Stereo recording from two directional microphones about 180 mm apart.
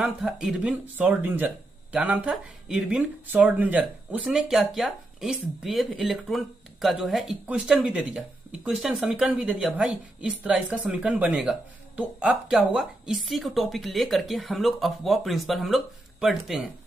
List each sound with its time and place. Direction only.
0.0 s speech: 5° right (ahead or behind)